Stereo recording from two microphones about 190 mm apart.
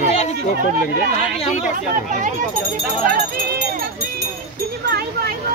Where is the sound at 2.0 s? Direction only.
45° right (ahead or behind).